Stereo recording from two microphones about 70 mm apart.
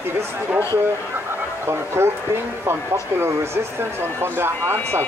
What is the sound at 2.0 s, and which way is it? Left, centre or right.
Speech, right.